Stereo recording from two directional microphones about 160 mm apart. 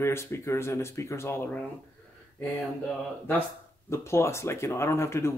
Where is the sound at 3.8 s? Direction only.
15° left (ahead or behind).